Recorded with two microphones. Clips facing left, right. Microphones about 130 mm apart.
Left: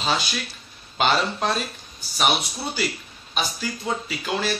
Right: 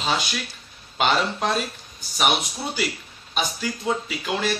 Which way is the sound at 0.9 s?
10° right (ahead or behind).